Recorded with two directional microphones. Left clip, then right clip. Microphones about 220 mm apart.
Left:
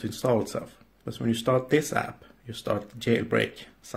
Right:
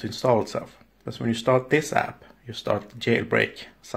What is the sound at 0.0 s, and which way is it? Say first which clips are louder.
Speech: right 4 dB; 5° left (ahead or behind).